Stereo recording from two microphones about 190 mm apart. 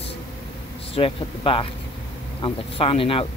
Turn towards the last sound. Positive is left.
turn(degrees=30)  # may be behind; listen again after turning